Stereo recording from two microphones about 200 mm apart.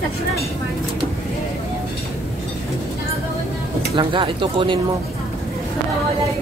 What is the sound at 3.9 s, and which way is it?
Speech, 25° right (ahead or behind).